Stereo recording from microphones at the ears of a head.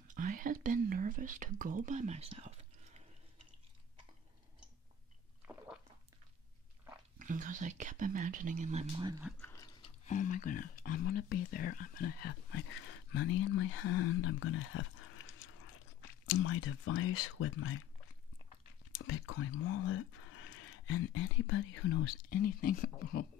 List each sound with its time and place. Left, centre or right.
0.1 s whispering: right
7.4 s speech: right
9.6 s speech: left